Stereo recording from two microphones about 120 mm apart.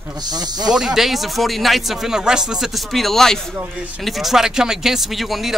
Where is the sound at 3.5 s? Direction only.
10° right (ahead or behind).